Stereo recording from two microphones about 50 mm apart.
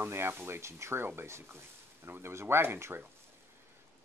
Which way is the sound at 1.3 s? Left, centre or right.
Right.